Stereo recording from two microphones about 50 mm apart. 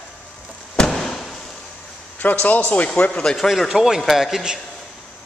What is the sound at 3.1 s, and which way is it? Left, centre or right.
Speech, centre.